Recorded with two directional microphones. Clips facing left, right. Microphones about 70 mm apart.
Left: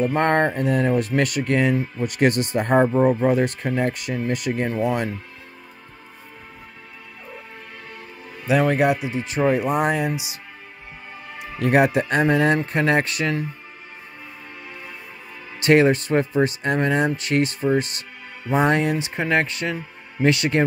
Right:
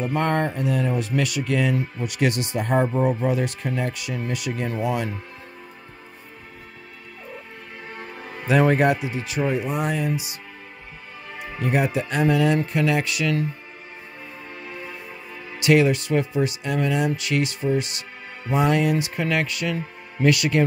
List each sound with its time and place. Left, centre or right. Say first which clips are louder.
0.1 s speech: left 4 dB; left
8.5 s speech: even; centre
9.0 s speech: left 3 dB; left
9.5 s speech: left 6 dB; left
11.6 s speech: left 5 dB; left
12.2 s speech: even; left
15.6 s speech: left 2 dB; left